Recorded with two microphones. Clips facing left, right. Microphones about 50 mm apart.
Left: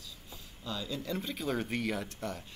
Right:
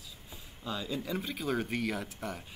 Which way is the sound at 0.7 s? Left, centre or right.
Centre.